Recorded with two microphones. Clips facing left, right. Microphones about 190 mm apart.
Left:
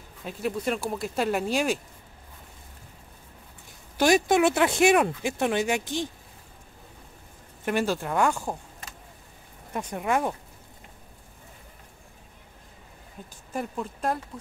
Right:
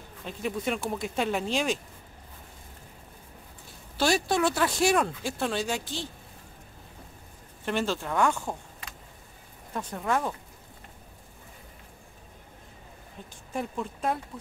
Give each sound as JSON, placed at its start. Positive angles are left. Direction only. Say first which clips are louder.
{"t": 0.2, "sound": "speech", "louder": "left 2 dB", "side_deg": 5}
{"t": 4.0, "sound": "speech", "louder": "left 5 dB", "side_deg": 15}
{"t": 7.6, "sound": "speech", "louder": "left 3 dB", "side_deg": 10}
{"t": 9.8, "sound": "speech", "louder": "left 2 dB", "side_deg": 15}
{"t": 13.5, "sound": "speech", "louder": "left 1 dB", "side_deg": 0}